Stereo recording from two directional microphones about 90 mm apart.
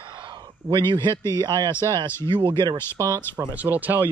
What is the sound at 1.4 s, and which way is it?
Speech, 45° right (ahead or behind).